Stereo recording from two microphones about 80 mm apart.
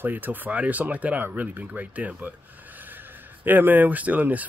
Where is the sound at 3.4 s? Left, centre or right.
Right.